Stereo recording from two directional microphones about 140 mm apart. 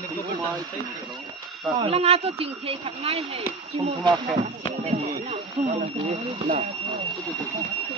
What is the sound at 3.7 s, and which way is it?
Speech, 35° right (ahead or behind).